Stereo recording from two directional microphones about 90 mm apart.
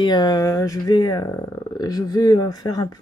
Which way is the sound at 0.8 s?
50° left (ahead or behind).